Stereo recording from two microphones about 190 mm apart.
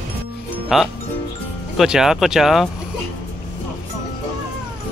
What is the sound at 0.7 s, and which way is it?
Speech, centre (ahead or behind).